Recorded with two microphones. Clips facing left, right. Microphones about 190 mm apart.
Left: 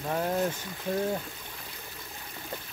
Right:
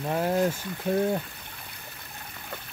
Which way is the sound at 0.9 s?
60° right (ahead or behind).